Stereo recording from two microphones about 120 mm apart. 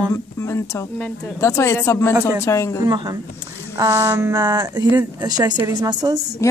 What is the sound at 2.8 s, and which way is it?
Speech, 35° right (ahead or behind).